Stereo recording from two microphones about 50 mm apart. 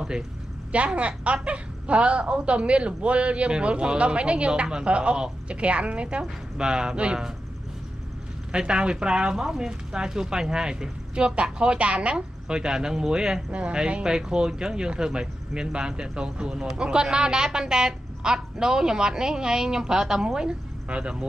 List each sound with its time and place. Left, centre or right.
0.7 s a woman's voice: right
8.5 s speech: centre